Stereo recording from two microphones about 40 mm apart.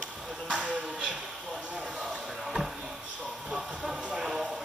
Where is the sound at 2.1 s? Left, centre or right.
Centre.